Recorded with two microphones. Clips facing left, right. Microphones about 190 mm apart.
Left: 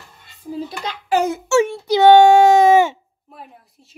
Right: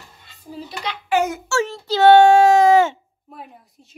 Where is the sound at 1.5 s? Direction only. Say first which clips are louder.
Left 6 dB; 20° left (ahead or behind).